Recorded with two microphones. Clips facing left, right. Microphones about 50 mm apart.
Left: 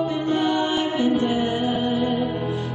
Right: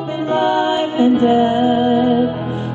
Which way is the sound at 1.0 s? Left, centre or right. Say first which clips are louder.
Right 11 dB; right.